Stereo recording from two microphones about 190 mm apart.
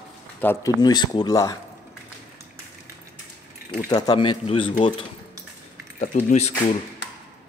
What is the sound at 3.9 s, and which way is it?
Speech, 20° left (ahead or behind).